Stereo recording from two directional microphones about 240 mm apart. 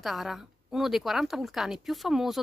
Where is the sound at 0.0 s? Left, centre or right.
Centre.